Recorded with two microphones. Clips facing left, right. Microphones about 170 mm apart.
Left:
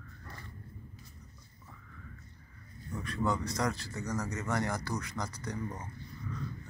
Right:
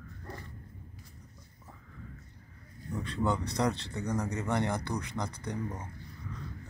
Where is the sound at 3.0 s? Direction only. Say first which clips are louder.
Right 1 dB; 25° right (ahead or behind).